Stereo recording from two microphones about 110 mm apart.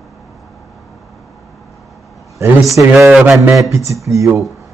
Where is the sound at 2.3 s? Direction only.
30° right (ahead or behind).